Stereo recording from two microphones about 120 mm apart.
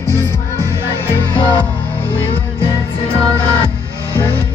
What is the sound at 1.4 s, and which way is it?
Music, 45° left (ahead or behind).